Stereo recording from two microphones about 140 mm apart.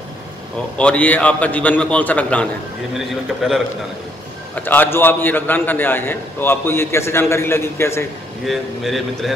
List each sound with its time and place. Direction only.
0.7 s a man's voice: 10° left (ahead or behind)
3.4 s a man's voice: centre (ahead or behind)
4.6 s a man's voice: 15° left (ahead or behind)
8.5 s a man's voice: centre (ahead or behind)